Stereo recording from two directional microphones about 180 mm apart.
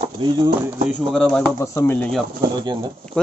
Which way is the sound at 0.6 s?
10° right (ahead or behind).